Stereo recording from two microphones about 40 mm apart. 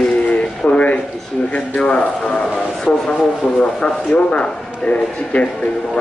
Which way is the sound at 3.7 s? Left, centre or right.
Left.